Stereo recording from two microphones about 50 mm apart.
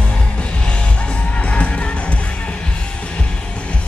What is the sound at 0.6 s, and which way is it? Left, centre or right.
Music, left.